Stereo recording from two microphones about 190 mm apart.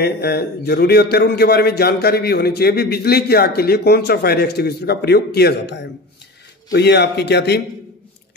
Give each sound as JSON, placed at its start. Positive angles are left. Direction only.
{"t": 0.0, "sound": "a man's voice", "side_deg": 55}